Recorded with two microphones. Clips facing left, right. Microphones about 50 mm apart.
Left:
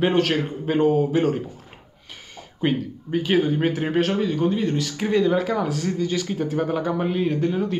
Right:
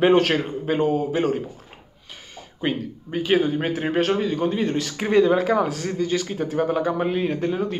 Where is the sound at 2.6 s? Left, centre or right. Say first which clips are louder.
Left 2 dB; centre.